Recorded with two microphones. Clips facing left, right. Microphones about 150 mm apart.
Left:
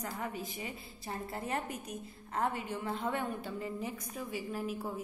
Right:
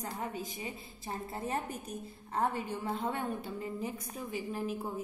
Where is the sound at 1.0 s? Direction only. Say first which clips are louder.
Right 1 dB; 20° right (ahead or behind).